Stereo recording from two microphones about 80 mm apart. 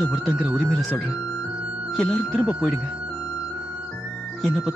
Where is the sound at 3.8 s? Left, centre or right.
Centre.